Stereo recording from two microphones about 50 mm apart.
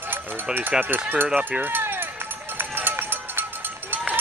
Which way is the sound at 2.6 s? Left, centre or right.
Right.